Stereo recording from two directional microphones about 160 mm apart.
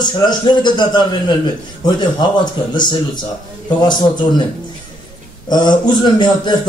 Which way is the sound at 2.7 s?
25° left (ahead or behind).